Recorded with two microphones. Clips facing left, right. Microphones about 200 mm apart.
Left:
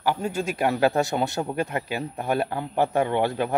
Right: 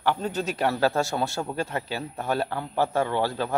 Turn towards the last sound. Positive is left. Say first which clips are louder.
# left 2 dB
turn(degrees=20)  # may be behind; listen again after turning